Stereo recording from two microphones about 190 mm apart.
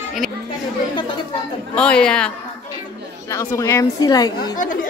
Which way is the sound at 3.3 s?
15° left (ahead or behind).